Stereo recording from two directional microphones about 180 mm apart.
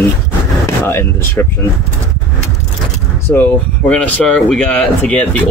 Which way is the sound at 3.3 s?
10° left (ahead or behind).